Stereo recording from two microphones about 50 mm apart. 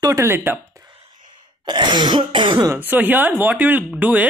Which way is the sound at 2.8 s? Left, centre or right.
Right.